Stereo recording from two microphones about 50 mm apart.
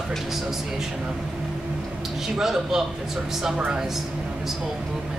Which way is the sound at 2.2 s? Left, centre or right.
Centre.